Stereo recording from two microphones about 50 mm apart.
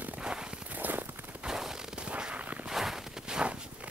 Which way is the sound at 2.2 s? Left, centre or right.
Right.